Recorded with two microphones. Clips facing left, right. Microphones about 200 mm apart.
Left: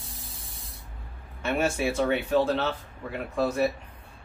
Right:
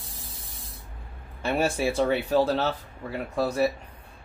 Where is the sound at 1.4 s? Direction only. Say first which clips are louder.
Right 1 dB; 35° right (ahead or behind).